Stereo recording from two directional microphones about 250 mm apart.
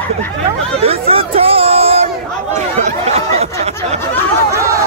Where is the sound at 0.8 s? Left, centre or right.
Right.